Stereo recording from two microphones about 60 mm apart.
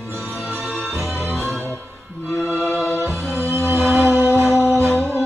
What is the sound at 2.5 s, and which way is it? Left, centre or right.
Music, left.